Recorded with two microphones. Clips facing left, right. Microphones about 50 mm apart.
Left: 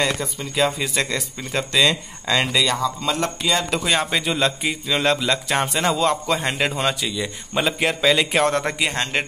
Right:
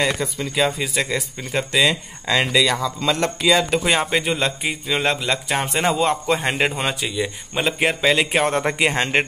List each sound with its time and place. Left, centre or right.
0.0 s speech: centre
3.8 s speech: centre
5.9 s a man's voice: centre